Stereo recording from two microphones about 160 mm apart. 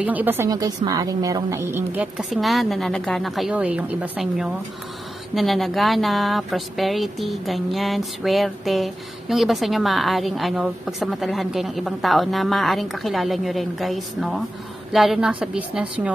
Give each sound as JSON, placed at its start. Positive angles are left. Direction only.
{"t": 0.0, "sound": "a woman's voice", "side_deg": -10}